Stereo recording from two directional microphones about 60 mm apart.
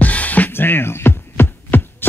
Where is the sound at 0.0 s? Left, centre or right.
Left.